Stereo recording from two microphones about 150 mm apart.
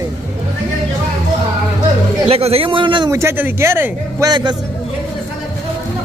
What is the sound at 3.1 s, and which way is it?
Speech, 20° right (ahead or behind).